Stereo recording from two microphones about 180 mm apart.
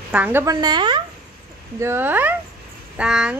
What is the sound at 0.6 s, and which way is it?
Speech, 25° right (ahead or behind).